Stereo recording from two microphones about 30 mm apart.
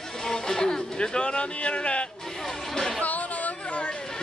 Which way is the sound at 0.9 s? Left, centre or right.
Left.